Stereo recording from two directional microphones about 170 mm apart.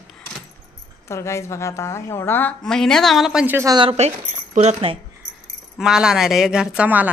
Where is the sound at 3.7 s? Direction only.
30° right (ahead or behind).